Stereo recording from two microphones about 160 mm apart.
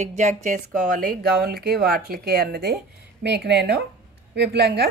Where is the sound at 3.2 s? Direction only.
90° right.